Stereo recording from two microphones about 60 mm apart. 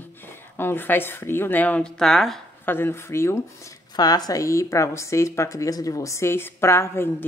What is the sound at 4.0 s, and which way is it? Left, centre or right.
Speech, left.